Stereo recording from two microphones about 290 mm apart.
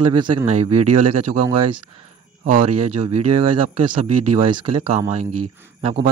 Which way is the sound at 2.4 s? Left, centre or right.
Right.